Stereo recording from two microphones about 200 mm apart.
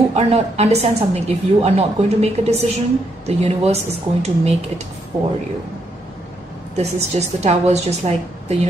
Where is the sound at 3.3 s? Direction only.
30° right (ahead or behind).